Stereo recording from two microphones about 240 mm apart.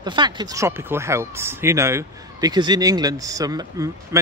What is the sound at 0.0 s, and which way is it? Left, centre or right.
A man's voice, centre.